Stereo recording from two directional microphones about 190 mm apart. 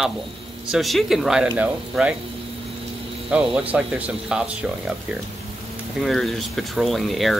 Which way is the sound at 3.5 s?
5° right (ahead or behind).